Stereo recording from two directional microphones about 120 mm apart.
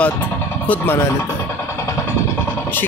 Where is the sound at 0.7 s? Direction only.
20° left (ahead or behind).